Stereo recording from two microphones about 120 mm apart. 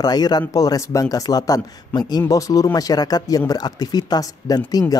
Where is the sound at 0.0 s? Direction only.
35° left (ahead or behind).